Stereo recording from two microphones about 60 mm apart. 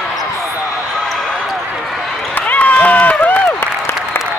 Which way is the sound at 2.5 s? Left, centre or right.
Left.